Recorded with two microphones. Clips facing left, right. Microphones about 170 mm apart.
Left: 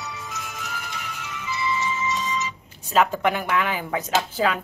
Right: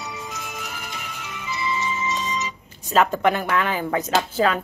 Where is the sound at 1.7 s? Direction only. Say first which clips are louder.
Even; 20° right (ahead or behind).